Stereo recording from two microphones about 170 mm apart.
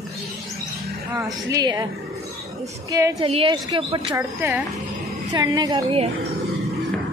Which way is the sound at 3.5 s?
20° right (ahead or behind).